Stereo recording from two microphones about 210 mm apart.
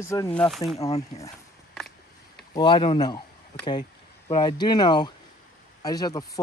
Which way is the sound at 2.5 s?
20° left (ahead or behind).